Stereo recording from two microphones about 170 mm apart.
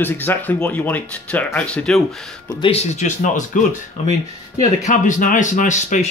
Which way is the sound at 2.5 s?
30° left (ahead or behind).